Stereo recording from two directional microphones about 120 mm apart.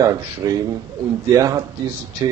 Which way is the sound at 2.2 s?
30° right (ahead or behind).